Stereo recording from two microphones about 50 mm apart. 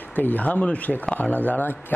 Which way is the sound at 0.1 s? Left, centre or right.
Left.